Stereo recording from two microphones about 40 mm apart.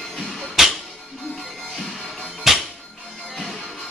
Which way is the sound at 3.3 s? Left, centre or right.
Centre.